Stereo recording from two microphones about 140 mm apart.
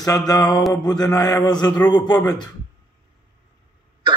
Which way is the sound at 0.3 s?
30° left (ahead or behind).